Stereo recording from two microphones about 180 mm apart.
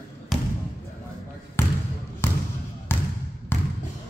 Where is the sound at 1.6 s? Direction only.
15° left (ahead or behind).